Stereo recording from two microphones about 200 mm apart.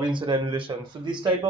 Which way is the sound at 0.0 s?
25° right (ahead or behind).